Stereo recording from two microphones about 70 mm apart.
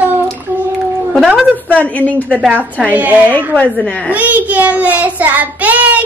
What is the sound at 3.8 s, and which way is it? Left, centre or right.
Speech, centre.